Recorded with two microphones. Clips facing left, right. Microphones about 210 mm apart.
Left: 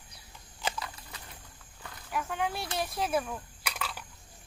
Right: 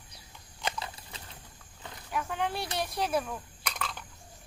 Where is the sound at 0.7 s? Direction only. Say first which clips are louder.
Right 1 dB; 25° right (ahead or behind).